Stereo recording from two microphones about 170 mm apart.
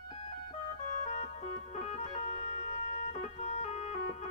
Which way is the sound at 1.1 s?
40° left (ahead or behind).